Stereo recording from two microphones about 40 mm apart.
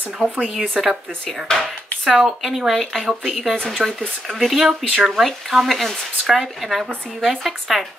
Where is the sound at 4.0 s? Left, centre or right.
Centre.